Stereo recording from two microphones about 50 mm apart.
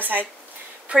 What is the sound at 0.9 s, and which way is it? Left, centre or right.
Speech, right.